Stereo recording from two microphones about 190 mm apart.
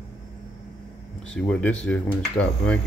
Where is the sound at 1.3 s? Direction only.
10° left (ahead or behind).